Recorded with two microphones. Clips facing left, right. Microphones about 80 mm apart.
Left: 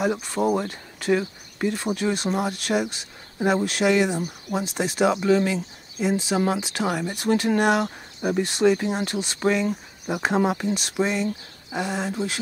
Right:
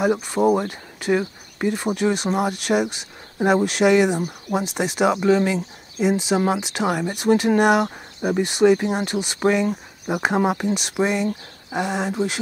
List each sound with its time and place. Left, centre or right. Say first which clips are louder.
0.0 s speech: right 4 dB; centre